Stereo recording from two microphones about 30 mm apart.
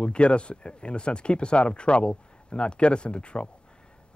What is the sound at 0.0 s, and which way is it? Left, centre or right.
Speech, left.